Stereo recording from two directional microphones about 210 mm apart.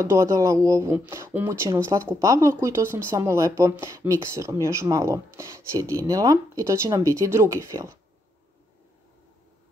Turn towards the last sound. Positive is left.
turn(degrees=-15)  # may be behind; listen again after turning